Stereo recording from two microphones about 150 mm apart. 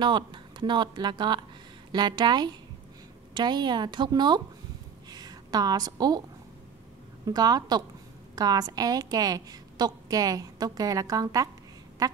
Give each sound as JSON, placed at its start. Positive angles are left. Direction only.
{"t": 0.0, "sound": "a woman's voice", "side_deg": -30}
{"t": 7.2, "sound": "a woman's voice", "side_deg": -25}